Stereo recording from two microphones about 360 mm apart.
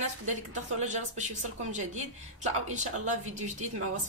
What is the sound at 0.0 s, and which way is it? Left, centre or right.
A woman's voice, centre.